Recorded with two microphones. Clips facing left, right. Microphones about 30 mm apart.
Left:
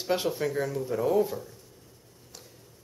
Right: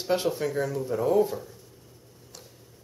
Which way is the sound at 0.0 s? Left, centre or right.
Centre.